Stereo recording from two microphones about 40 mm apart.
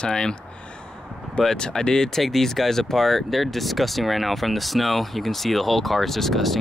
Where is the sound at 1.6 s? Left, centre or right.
Centre.